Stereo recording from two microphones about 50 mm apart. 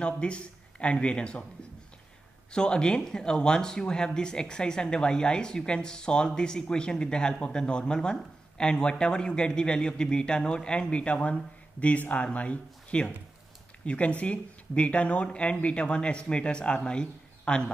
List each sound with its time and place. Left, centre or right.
0.0 s speech: left
2.5 s speech: centre